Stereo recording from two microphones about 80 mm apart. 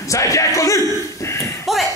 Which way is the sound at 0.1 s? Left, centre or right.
Left.